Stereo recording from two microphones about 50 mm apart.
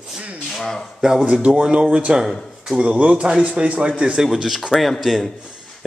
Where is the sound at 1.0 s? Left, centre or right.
Centre.